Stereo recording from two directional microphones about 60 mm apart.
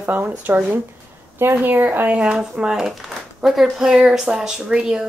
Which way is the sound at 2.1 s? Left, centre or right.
Centre.